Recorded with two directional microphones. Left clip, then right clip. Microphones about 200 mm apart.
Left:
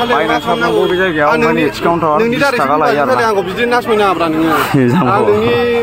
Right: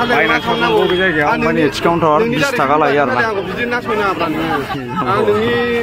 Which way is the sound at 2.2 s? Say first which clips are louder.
Left 3 dB; 45° left (ahead or behind).